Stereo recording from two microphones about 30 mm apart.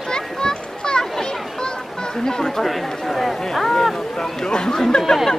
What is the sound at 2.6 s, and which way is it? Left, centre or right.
Chatter, centre.